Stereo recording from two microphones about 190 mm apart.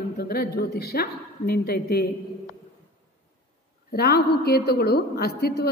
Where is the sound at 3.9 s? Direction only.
55° left (ahead or behind).